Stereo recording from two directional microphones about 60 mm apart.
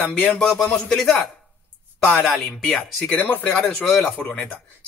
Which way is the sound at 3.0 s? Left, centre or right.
Left.